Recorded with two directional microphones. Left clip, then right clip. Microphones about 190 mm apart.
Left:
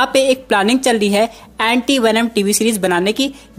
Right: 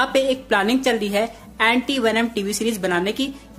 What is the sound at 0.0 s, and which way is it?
A woman's voice, 40° left (ahead or behind).